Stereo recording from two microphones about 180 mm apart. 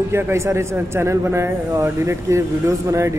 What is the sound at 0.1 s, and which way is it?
A man's voice, 15° right (ahead or behind).